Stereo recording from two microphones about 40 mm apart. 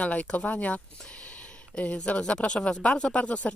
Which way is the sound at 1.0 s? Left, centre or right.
Left.